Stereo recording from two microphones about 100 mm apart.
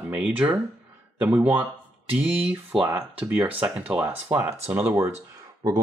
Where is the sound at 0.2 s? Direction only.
15° right (ahead or behind).